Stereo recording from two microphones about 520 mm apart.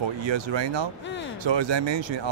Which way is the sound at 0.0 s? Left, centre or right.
Right.